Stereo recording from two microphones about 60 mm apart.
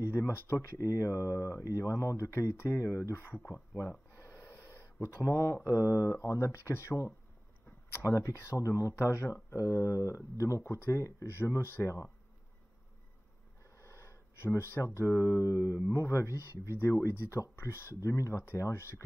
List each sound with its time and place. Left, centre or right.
0.0 s speech: left
4.1 s snort: left
5.0 s speech: left
5.7 s speech: left
8.3 s speech: left
8.6 s speech: left
10.6 s speech: left
13.7 s speech: left
18.0 s speech: left